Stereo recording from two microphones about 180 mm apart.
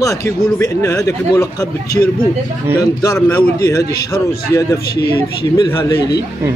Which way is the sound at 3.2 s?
10° left (ahead or behind).